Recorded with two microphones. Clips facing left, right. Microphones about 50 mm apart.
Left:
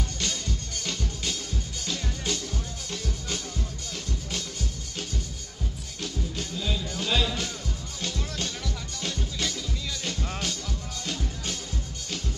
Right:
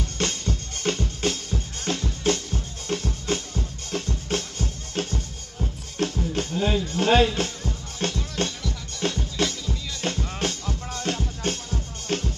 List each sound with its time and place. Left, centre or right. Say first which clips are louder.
0.2 s music: right 8 dB; right